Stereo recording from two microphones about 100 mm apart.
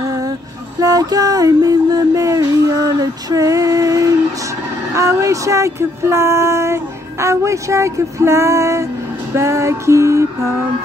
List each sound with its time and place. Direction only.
0.7 s music: 35° right (ahead or behind)
4.9 s speech: 30° right (ahead or behind)